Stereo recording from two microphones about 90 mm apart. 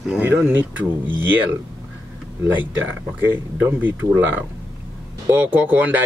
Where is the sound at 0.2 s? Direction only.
20° right (ahead or behind).